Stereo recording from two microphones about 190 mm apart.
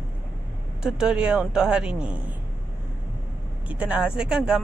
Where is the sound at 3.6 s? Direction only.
5° right (ahead or behind).